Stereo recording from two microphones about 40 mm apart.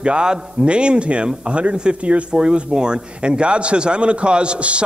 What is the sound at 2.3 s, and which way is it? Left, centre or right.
A man's voice, right.